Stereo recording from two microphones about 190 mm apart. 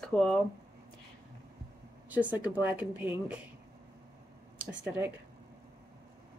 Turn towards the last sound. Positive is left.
turn(degrees=-10)  # may be behind; listen again after turning